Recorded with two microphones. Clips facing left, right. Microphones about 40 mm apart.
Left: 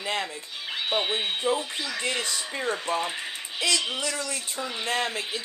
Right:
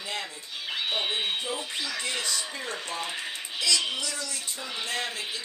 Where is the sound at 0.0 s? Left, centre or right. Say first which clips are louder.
Left 5 dB; left.